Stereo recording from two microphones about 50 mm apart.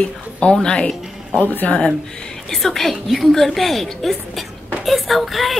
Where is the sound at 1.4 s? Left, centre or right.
Left.